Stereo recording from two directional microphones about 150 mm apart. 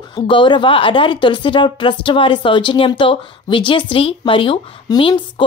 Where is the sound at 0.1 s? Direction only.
30° left (ahead or behind).